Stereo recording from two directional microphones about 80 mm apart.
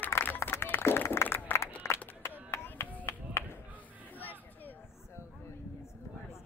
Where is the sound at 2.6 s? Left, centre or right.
Left.